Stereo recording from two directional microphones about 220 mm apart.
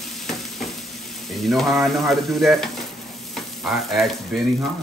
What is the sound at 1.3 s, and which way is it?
Speech, centre (ahead or behind).